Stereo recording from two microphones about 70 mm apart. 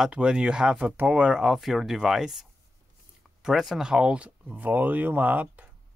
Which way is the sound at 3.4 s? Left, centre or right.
Centre.